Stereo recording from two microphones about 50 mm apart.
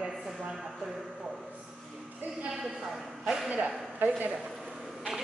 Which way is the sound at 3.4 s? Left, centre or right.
Right.